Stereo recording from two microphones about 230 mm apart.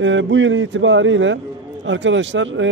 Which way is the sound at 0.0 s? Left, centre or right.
Right.